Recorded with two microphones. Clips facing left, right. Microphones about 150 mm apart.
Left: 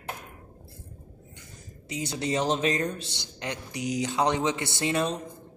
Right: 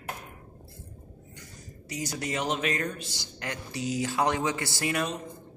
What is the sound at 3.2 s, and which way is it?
Speech, 20° left (ahead or behind).